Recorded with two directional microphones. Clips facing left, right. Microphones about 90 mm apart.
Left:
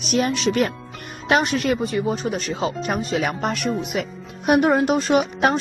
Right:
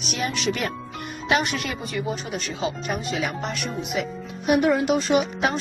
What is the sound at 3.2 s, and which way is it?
Speech, 50° left (ahead or behind).